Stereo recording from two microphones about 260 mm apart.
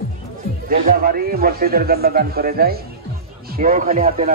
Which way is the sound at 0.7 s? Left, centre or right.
Right.